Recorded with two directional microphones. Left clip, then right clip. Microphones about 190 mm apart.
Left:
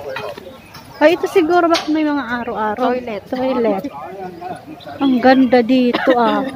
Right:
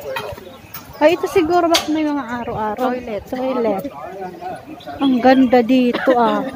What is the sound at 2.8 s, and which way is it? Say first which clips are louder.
Speech: left 2 dB; 60° left (ahead or behind).